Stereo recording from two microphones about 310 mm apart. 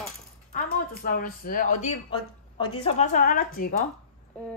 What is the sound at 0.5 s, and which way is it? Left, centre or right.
A woman's voice, left.